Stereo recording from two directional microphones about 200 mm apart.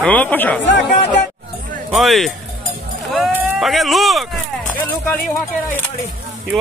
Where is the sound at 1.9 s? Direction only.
Centre (ahead or behind).